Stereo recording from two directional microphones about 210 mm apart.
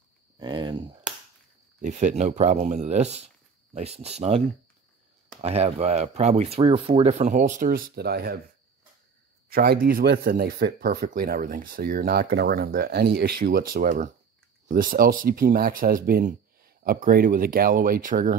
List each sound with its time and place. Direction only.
0.4 s a sound: 20° right (ahead or behind)
1.8 s speech: 35° right (ahead or behind)
5.4 s speech: 30° right (ahead or behind); by 8.4 s 50° right (ahead or behind)
9.5 s speech: 45° right (ahead or behind)